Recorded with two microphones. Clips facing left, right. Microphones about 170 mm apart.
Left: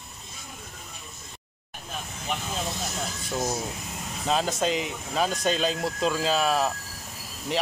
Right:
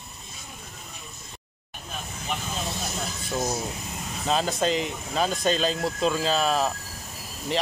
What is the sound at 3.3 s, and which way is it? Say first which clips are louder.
Speech: right 1 dB; 5° right (ahead or behind).